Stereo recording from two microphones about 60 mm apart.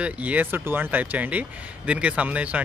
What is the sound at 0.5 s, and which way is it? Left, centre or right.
Speech, right.